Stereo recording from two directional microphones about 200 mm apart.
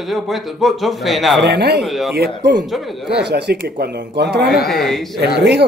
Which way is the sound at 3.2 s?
55° right (ahead or behind).